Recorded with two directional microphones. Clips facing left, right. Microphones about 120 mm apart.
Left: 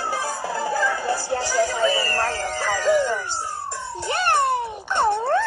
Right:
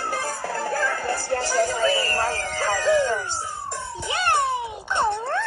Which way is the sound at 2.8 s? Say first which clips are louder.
Left 1 dB; 5° left (ahead or behind).